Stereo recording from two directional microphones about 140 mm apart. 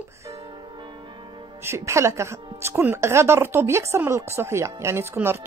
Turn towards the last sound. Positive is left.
turn(degrees=-15)  # may be behind; listen again after turning